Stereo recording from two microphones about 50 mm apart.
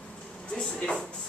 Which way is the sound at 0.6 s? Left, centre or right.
Centre.